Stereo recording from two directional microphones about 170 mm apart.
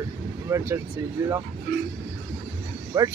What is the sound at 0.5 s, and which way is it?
Speech, 15° right (ahead or behind).